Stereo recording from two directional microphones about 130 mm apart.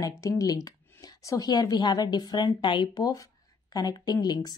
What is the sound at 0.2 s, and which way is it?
A woman's voice, 25° left (ahead or behind).